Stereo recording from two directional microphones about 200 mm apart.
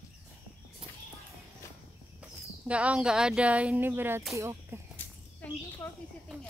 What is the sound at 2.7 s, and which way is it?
Speech, 5° right (ahead or behind).